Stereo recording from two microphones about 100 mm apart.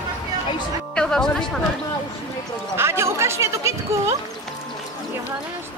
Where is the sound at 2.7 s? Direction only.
25° right (ahead or behind).